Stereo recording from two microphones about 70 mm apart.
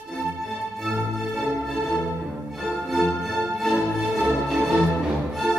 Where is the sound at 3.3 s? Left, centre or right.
Centre.